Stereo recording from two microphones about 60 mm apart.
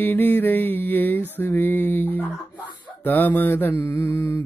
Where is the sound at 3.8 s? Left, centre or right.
Left.